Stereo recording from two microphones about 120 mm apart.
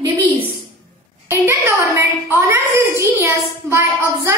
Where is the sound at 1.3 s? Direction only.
25° right (ahead or behind).